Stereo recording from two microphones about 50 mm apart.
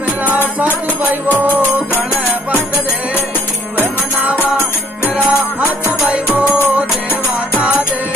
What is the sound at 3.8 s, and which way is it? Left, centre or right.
Music, right.